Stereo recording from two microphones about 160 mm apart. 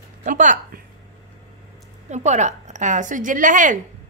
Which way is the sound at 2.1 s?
45° right (ahead or behind).